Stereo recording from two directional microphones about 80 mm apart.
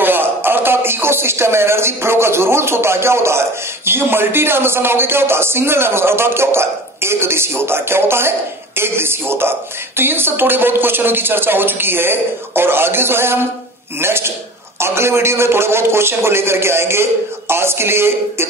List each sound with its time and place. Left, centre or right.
0.0 s a man's voice: right